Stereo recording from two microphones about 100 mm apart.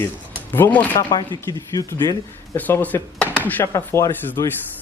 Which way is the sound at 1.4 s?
35° left (ahead or behind).